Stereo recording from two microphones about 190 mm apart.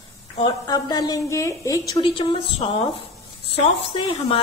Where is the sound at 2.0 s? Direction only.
25° left (ahead or behind).